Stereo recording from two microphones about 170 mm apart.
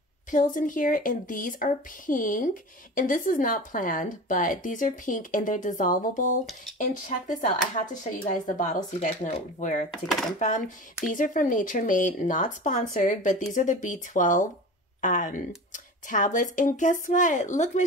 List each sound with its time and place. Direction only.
0.3 s a woman's voice: 50° left (ahead or behind)